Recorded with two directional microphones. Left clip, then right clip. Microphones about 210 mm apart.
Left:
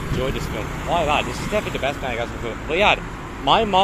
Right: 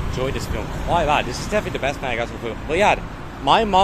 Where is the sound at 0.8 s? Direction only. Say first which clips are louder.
Right 1 dB; 15° right (ahead or behind).